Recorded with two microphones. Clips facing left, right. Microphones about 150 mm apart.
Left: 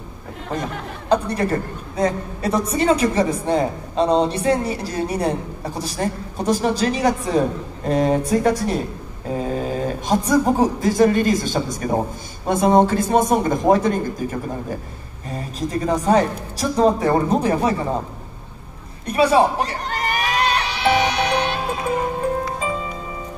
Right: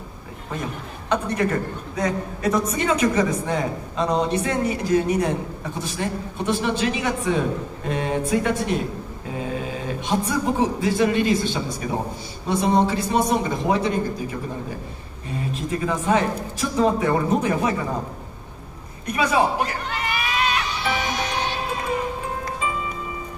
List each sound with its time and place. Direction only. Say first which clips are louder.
1.0 s a woman's voice: left 3 dB; 35° left (ahead or behind)
15.3 s a woman's voice: left 2 dB; 40° left (ahead or behind)
19.0 s a sound: left 5 dB; 30° left (ahead or behind)
20.6 s music: left 7 dB; 75° left (ahead or behind)
22.6 s music: left 2 dB; 35° left (ahead or behind)